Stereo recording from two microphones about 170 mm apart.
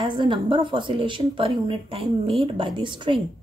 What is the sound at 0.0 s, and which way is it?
A woman's voice, 30° right (ahead or behind).